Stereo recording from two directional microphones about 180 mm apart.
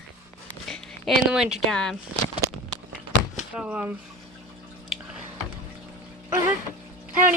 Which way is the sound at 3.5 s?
5° right (ahead or behind).